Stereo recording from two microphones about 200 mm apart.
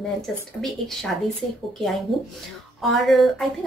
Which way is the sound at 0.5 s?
Centre (ahead or behind).